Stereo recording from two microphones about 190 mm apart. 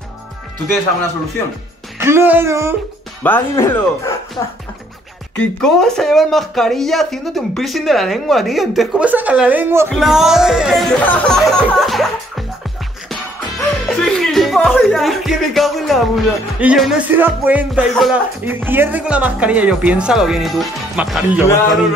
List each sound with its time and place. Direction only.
2.0 s music: 10° right (ahead or behind)
3.3 s speech: 15° left (ahead or behind)
5.3 s speech: 5° left (ahead or behind)
13.1 s music: centre (ahead or behind)